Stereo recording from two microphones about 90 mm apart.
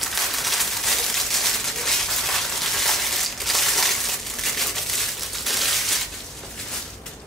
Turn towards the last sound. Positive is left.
turn(degrees=0)  # may be behind; listen again after turning